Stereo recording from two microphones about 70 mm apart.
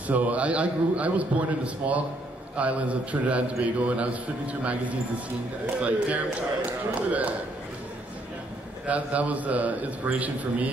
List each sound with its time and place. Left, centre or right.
0.0 s a man's voice: right
8.8 s a man's voice: centre